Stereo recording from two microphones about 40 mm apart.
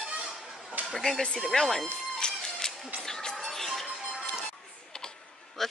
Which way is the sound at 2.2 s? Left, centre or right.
Centre.